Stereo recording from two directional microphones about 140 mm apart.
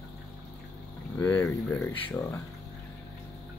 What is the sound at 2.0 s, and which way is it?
Speech, 20° left (ahead or behind).